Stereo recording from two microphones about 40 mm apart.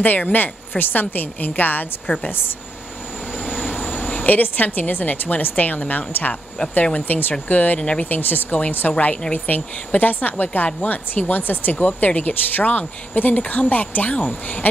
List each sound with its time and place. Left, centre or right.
0.0 s a woman's voice: left
3.7 s a sound: left
4.4 s a woman's voice: left
7.8 s speech: left
8.1 s a woman's voice: left